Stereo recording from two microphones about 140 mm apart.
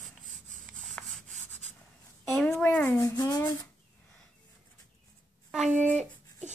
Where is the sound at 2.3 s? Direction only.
5° left (ahead or behind).